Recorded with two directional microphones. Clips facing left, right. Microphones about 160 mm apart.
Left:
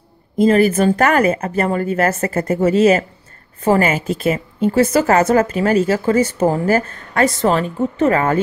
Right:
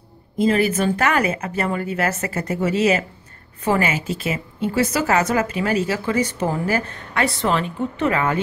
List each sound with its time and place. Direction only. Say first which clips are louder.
0.4 s a woman's voice: left 5 dB; 50° left (ahead or behind)